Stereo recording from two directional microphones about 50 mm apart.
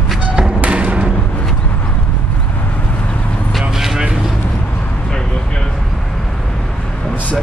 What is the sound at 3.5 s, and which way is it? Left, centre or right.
Vehicle, centre.